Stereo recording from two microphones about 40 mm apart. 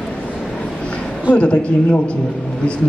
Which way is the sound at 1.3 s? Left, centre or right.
Left.